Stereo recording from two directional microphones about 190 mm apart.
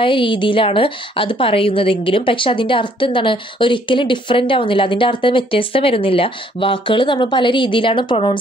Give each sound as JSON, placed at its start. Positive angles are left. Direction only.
{"t": 0.0, "sound": "a woman's voice", "side_deg": 25}